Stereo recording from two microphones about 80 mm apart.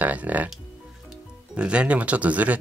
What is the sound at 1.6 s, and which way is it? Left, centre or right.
Speech, centre.